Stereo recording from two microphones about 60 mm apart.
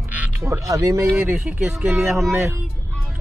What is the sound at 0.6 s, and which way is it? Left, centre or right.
Speech, right.